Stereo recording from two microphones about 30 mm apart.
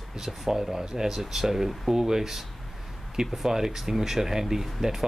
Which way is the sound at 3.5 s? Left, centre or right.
Centre.